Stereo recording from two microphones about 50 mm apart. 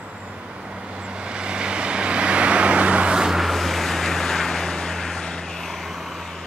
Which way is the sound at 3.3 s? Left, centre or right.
Centre.